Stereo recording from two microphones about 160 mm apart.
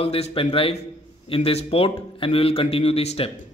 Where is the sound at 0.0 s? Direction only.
35° left (ahead or behind).